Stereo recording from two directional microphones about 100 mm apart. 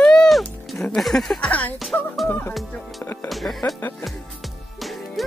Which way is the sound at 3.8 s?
25° left (ahead or behind).